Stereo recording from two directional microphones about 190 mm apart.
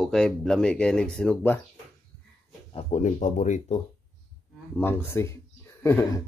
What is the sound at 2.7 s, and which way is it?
Speech, 35° left (ahead or behind).